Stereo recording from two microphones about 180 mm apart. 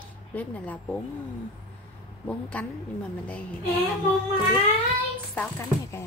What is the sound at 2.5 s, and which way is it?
Speech, 5° left (ahead or behind).